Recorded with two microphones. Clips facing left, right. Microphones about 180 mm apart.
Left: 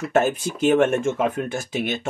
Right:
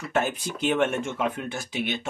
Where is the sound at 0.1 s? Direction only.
45° left (ahead or behind).